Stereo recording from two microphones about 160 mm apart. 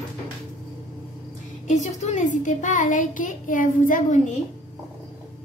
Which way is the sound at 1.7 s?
45° left (ahead or behind).